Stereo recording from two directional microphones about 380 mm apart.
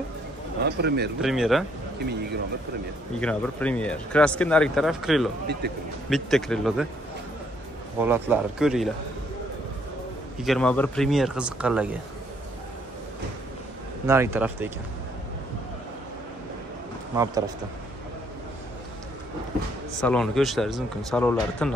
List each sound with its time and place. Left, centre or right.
0.7 s speech: right
1.2 s speech: centre
3.2 s speech: centre
5.6 s speech: right
6.0 s speech: centre
8.0 s speech: centre
10.4 s speech: centre
14.0 s speech: centre
17.1 s speech: centre
20.0 s speech: centre